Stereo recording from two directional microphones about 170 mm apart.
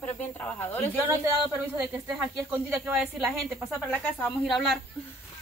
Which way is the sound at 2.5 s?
10° right (ahead or behind).